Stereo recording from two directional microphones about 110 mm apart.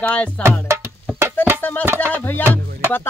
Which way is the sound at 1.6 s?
15° left (ahead or behind).